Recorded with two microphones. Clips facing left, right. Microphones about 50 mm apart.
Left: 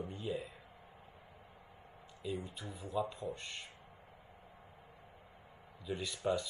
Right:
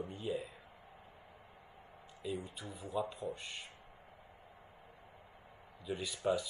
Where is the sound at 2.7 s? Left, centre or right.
Right.